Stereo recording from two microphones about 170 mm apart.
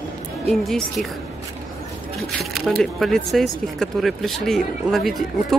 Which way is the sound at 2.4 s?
Centre (ahead or behind).